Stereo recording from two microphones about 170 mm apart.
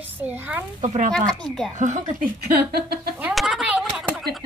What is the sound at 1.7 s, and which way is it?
Speech, 45° right (ahead or behind).